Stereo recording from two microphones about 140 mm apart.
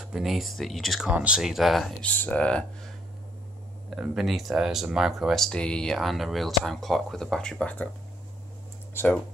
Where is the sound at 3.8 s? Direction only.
5° right (ahead or behind).